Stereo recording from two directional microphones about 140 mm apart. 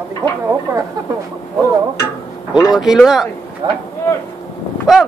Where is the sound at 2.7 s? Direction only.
5° right (ahead or behind).